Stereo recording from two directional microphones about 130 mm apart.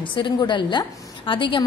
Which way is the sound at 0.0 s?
40° left (ahead or behind).